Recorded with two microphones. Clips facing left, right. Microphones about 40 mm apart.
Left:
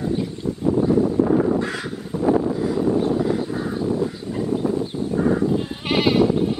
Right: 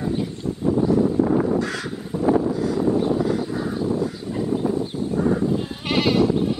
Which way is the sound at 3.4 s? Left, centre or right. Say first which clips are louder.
Even; centre.